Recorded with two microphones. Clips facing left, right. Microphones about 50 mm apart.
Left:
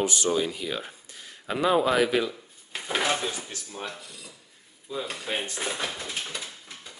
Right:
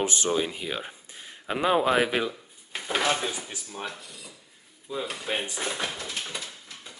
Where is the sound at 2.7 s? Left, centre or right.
Centre.